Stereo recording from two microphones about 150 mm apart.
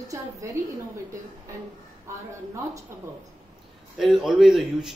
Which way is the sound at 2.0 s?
20° right (ahead or behind).